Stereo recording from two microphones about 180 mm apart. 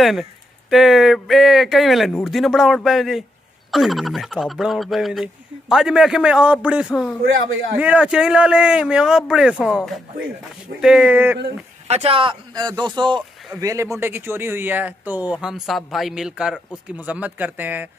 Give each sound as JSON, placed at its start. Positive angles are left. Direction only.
{"t": 0.0, "sound": "speech", "side_deg": 0}
{"t": 11.9, "sound": "speech", "side_deg": -35}